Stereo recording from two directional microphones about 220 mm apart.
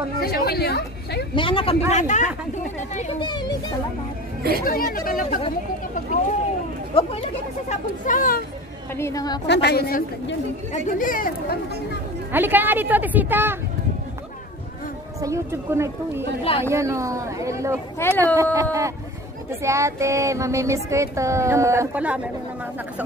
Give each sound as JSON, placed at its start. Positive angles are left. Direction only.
{"t": 0.2, "sound": "a woman's voice", "side_deg": 45}
{"t": 1.3, "sound": "speech", "side_deg": 25}
{"t": 3.2, "sound": "speech", "side_deg": 20}
{"t": 4.6, "sound": "speech", "side_deg": 40}
{"t": 7.0, "sound": "speech", "side_deg": 30}
{"t": 8.9, "sound": "a woman's voice", "side_deg": 15}
{"t": 9.5, "sound": "a woman's voice", "side_deg": 50}
{"t": 12.3, "sound": "child singing", "side_deg": -10}
{"t": 15.1, "sound": "child singing", "side_deg": -15}
{"t": 17.9, "sound": "a woman's voice", "side_deg": 10}
{"t": 18.3, "sound": "child singing", "side_deg": -15}